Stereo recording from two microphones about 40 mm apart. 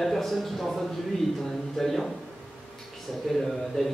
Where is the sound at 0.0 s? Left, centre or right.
Centre.